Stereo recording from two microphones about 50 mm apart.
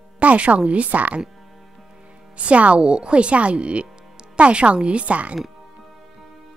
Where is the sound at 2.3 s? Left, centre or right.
Right.